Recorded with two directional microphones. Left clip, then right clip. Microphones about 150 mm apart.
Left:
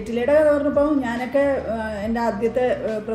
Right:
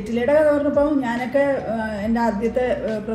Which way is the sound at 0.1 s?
25° left (ahead or behind).